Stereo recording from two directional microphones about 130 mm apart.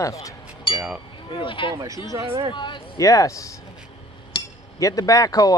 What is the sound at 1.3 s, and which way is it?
Speech, 40° left (ahead or behind).